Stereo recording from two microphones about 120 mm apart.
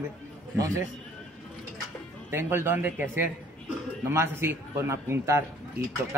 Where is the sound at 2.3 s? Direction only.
20° right (ahead or behind).